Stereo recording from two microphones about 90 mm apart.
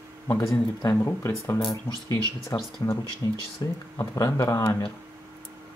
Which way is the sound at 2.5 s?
45° left (ahead or behind).